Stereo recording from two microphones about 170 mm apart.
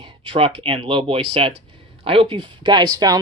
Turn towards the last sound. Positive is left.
turn(degrees=-20)  # may be behind; listen again after turning